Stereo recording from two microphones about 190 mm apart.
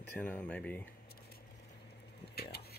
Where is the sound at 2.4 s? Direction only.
55° left (ahead or behind).